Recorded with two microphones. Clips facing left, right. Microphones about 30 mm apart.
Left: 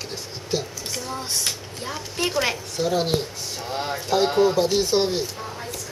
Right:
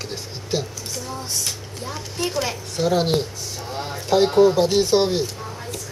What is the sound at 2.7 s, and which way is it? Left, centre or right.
Speech, centre.